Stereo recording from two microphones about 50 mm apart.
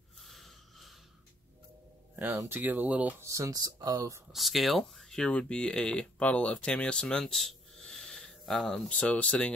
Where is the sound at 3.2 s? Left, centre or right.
Right.